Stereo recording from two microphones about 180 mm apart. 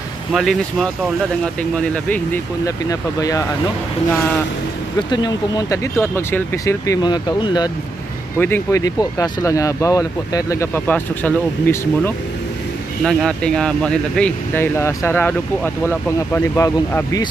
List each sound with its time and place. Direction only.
0.3 s speech: centre (ahead or behind); by 3.4 s 20° left (ahead or behind)
5.1 s speech: 20° left (ahead or behind)
8.4 s speech: 10° left (ahead or behind)